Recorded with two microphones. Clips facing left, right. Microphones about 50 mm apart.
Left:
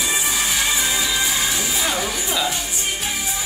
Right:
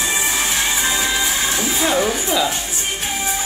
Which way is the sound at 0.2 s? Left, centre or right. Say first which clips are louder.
Right 2 dB; right.